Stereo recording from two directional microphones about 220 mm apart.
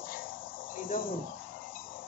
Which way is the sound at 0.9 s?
40° left (ahead or behind).